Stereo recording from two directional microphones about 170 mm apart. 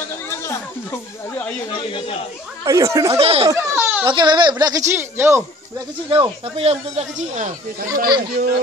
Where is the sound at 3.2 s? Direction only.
35° right (ahead or behind).